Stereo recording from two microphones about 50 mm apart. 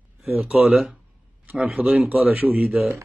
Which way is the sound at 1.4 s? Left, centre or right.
Right.